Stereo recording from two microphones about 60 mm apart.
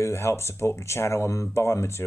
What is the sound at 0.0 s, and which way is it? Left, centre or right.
Speech, left.